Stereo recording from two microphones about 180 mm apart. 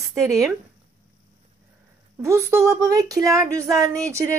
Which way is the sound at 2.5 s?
15° right (ahead or behind).